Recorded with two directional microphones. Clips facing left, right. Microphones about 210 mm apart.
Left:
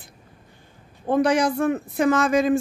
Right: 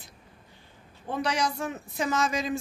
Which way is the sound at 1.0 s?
50° left (ahead or behind).